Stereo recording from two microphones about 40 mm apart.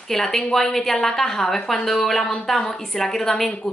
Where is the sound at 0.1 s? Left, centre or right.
Centre.